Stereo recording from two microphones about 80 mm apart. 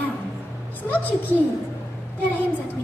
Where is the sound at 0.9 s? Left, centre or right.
Left.